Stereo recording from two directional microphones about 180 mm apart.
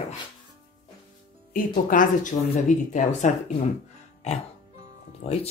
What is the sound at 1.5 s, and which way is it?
Speech, 45° left (ahead or behind).